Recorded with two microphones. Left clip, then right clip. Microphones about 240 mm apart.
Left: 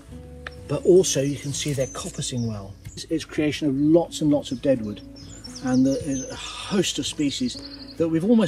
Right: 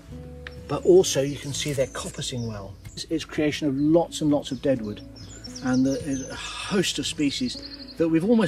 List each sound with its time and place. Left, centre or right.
0.7 s speech: right
3.0 s speech: centre
5.6 s speech: centre